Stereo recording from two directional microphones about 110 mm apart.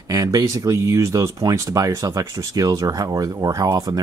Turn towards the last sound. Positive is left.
turn(degrees=-35)  # may be behind; listen again after turning